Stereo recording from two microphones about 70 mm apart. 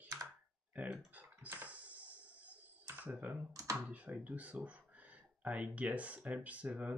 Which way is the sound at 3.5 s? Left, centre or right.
Right.